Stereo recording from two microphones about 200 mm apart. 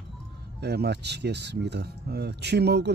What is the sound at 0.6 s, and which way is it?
Speech, 55° right (ahead or behind).